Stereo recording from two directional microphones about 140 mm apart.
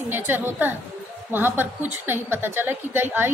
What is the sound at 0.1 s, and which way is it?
A woman's voice, 15° right (ahead or behind).